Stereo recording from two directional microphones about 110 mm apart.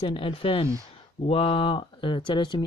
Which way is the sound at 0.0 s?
50° left (ahead or behind).